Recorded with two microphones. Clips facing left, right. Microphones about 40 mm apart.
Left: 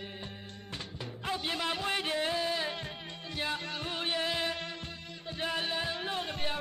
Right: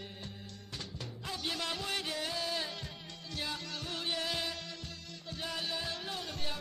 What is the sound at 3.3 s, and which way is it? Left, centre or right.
Music, left.